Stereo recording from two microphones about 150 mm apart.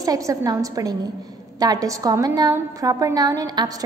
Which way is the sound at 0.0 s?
25° right (ahead or behind).